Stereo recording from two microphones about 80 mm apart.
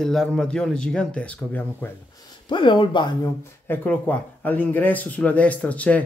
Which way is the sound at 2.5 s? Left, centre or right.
Left.